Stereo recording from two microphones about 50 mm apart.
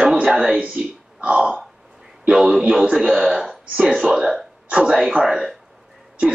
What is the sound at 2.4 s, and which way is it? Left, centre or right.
Speech, centre.